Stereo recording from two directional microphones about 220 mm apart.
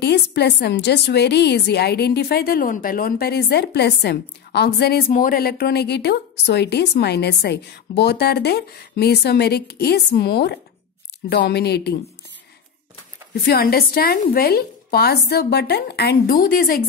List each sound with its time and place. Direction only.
0.0 s a woman's voice: 50° left (ahead or behind)
13.3 s a woman's voice: 45° left (ahead or behind)